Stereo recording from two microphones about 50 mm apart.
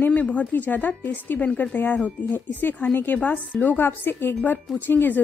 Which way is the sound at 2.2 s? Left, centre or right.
Left.